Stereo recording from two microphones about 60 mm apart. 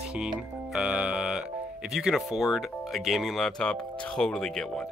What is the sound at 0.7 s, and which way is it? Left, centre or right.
Music, centre.